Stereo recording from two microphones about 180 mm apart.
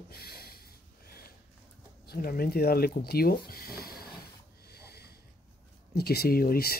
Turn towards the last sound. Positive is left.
turn(degrees=55)  # may be behind; listen again after turning